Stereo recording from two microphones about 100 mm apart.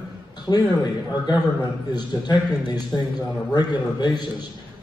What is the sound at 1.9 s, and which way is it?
A man's voice, 45° left (ahead or behind).